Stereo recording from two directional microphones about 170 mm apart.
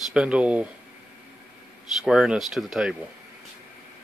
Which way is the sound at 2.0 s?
5° right (ahead or behind).